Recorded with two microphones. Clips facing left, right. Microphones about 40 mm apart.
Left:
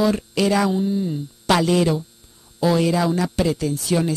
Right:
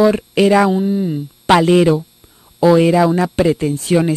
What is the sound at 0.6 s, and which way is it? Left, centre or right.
Speech, centre.